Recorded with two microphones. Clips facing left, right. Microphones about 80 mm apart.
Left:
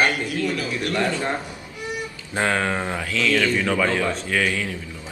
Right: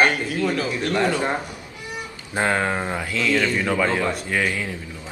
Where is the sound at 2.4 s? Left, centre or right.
Centre.